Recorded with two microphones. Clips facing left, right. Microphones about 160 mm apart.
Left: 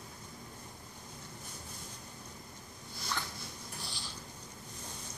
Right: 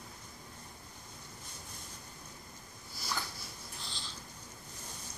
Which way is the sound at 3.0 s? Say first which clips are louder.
Even; 5° right (ahead or behind).